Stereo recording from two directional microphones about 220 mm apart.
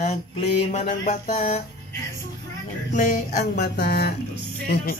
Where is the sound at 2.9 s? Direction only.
35° left (ahead or behind).